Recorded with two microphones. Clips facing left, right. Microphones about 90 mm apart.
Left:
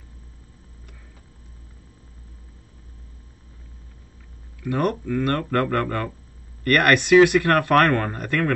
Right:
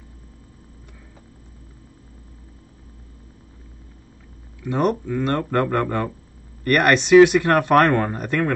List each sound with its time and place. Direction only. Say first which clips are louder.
4.6 s speech: right 2 dB; 20° right (ahead or behind)